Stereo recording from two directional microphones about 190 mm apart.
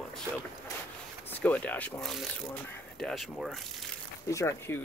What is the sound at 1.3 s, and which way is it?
Speech, 10° left (ahead or behind).